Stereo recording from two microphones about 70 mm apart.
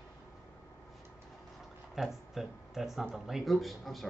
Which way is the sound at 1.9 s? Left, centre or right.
Centre.